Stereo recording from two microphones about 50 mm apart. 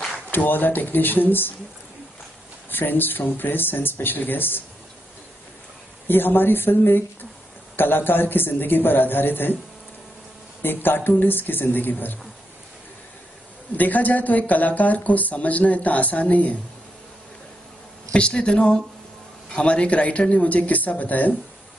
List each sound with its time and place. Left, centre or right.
0.3 s speech: left
2.7 s speech: left
6.0 s a man's voice: left
10.6 s a man's voice: left
13.7 s speech: left
18.1 s speech: centre; by 21.4 s left